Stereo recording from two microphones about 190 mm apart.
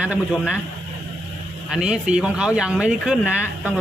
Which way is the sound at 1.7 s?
5° right (ahead or behind).